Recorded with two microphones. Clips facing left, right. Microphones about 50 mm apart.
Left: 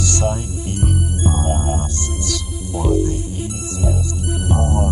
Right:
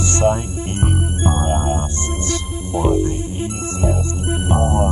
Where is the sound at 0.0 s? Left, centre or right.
Right.